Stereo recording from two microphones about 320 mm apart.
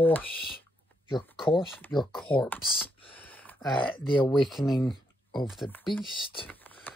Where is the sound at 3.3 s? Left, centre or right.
Centre.